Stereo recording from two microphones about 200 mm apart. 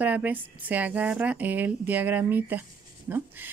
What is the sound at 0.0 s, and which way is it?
Speech, 10° right (ahead or behind).